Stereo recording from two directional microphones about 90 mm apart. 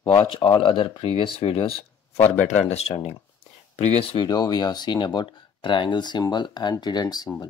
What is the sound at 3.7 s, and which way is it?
Speech, 90° left.